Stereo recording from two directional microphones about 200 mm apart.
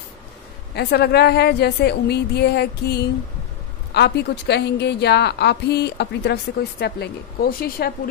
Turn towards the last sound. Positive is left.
turn(degrees=50)  # may be behind; listen again after turning